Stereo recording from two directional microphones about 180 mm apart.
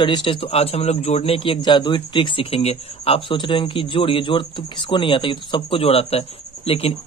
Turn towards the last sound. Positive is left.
turn(degrees=30)  # may be behind; listen again after turning